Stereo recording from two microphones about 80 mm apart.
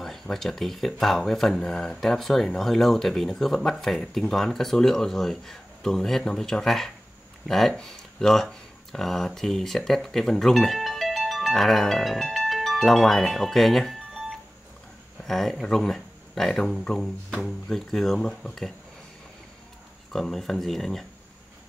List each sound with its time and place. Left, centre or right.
0.0 s speech: centre
15.2 s speech: centre
20.1 s speech: centre